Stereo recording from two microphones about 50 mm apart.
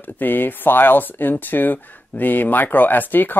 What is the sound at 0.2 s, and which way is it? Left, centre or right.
Speech, left.